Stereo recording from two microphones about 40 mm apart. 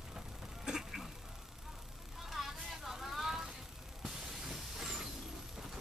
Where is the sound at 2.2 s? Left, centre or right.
Centre.